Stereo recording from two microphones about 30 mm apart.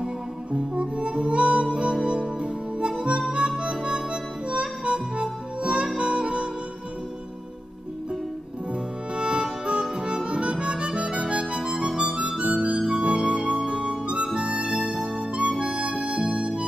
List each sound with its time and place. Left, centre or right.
0.0 s music: right
2.0 s harmonica: right
4.5 s music: right
9.1 s harmonica: right
12.8 s music: right
13.3 s harmonica: right